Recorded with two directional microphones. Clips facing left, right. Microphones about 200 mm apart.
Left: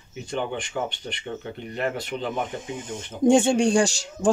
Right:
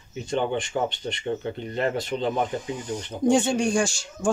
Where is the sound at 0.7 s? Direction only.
30° right (ahead or behind).